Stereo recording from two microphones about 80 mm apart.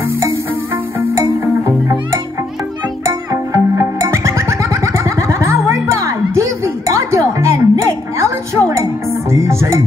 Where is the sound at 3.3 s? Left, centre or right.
Right.